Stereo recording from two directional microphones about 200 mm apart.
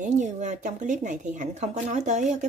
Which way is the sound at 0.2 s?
35° right (ahead or behind).